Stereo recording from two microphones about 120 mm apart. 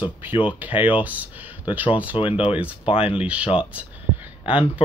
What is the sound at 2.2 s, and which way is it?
Speech, 50° left (ahead or behind).